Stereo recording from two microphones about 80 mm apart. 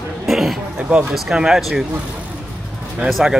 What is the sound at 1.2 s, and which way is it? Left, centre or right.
Speech, centre.